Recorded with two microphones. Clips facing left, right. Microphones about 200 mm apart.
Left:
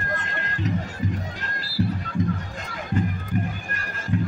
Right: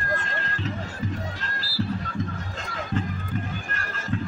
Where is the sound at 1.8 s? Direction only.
15° left (ahead or behind).